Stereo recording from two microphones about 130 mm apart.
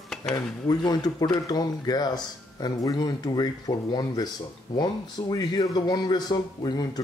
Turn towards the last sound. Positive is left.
turn(degrees=30)  # may be behind; listen again after turning